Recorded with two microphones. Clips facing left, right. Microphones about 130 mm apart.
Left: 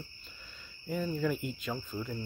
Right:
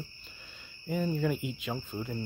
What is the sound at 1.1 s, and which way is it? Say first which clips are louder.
Speech: right 1 dB; 5° right (ahead or behind).